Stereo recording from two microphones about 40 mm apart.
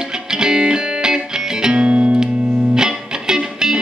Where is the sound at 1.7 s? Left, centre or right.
Right.